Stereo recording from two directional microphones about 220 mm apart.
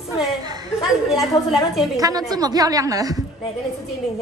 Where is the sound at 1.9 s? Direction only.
15° right (ahead or behind).